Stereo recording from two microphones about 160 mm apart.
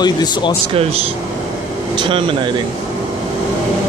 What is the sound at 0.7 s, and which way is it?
Speech, 35° right (ahead or behind).